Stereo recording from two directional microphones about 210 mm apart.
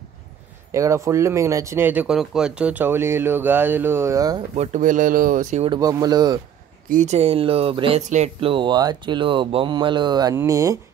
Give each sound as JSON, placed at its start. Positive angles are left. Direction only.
{"t": 0.7, "sound": "speech", "side_deg": -15}
{"t": 4.6, "sound": "speech", "side_deg": -40}
{"t": 5.7, "sound": "speech", "side_deg": -15}
{"t": 6.9, "sound": "speech", "side_deg": -35}